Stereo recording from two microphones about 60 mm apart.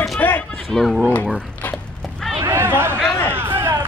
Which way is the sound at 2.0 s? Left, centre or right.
Centre.